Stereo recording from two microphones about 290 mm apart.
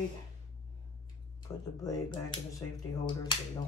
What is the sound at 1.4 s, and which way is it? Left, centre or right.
Speech, centre.